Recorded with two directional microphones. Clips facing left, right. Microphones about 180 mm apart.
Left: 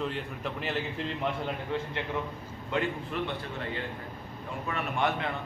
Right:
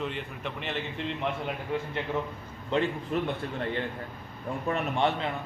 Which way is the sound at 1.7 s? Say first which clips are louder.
Right 2 dB; 10° right (ahead or behind).